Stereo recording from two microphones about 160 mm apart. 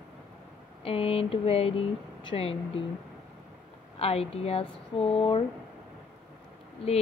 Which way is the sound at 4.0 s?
40° left (ahead or behind).